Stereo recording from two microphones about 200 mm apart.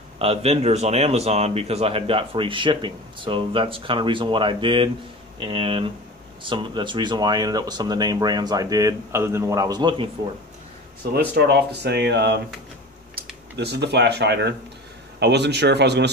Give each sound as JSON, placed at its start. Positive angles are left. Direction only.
{"t": 0.2, "sound": "speech", "side_deg": -30}
{"t": 11.1, "sound": "speech", "side_deg": -55}
{"t": 13.6, "sound": "speech", "side_deg": -55}